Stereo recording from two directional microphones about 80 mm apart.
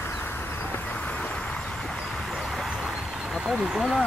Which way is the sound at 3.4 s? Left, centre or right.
Centre.